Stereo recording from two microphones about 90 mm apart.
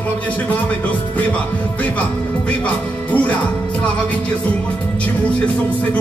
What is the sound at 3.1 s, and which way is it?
Speech, 15° left (ahead or behind).